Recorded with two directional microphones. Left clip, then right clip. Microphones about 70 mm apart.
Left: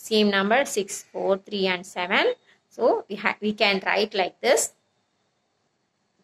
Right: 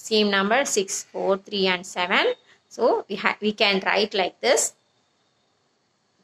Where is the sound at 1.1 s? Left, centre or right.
Right.